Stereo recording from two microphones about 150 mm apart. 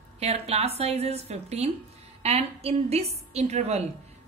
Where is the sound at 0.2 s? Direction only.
45° right (ahead or behind).